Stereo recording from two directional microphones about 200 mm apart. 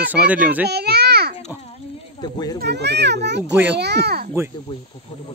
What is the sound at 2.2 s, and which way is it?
Speech, 20° left (ahead or behind).